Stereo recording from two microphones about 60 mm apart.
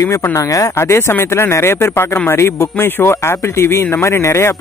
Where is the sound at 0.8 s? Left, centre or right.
Left.